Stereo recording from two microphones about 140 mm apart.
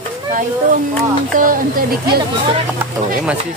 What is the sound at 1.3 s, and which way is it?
Speech, 80° right.